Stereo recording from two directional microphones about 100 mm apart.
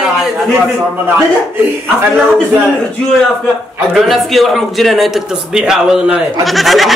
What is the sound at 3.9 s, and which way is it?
A man's voice, centre (ahead or behind).